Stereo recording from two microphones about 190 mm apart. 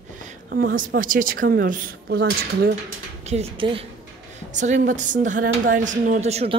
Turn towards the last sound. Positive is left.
turn(degrees=-35)  # may be behind; listen again after turning